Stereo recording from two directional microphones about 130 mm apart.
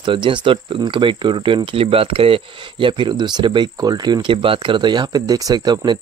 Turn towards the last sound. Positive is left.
turn(degrees=-35)  # may be behind; listen again after turning